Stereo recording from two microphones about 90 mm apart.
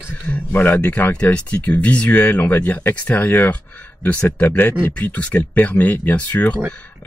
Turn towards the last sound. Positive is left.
turn(degrees=20)  # may be behind; listen again after turning